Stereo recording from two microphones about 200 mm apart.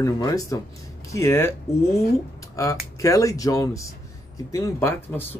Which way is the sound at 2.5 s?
15° left (ahead or behind).